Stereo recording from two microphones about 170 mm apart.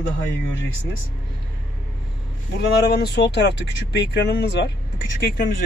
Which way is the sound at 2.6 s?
80° left.